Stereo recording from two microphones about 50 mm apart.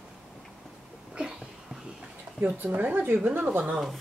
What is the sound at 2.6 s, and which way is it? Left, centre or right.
Speech, right.